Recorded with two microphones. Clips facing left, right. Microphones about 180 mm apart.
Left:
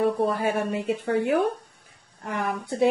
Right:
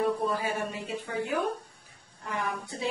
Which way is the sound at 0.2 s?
60° left (ahead or behind).